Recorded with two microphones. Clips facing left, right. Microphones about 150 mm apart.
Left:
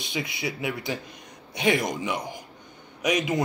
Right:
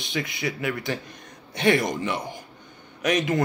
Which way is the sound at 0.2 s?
10° left (ahead or behind).